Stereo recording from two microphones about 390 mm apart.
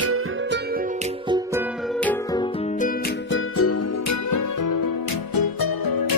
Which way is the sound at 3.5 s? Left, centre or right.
Left.